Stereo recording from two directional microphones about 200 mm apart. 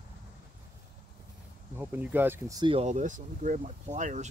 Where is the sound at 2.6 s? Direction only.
30° right (ahead or behind).